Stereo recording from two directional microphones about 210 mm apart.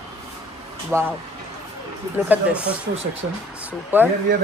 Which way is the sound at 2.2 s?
5° right (ahead or behind).